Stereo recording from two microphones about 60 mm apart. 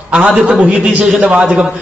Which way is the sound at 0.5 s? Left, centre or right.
Centre.